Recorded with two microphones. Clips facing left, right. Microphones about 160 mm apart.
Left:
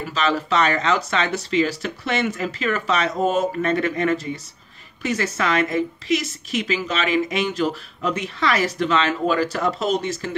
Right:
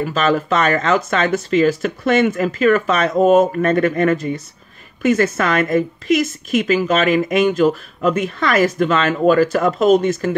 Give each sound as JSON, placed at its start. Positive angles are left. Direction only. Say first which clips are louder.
{"t": 0.0, "sound": "a woman's voice", "louder": "right 5 dB", "side_deg": -50}